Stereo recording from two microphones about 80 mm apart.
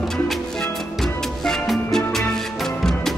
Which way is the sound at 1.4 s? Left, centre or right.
Centre.